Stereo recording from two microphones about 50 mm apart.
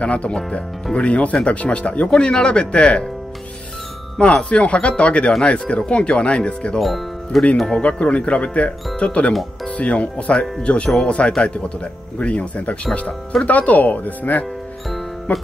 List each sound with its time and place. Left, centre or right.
0.0 s speech: left
4.2 s speech: left
6.8 s speech: centre
7.5 s speech: centre
8.0 s speech: left
12.2 s speech: left